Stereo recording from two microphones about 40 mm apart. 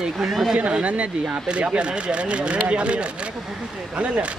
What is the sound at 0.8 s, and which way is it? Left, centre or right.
Speech, right.